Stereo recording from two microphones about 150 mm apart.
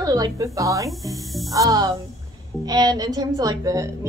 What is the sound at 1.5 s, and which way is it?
A woman's voice, 25° right (ahead or behind).